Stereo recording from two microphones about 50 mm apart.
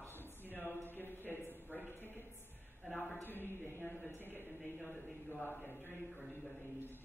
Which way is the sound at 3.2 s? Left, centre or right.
Left.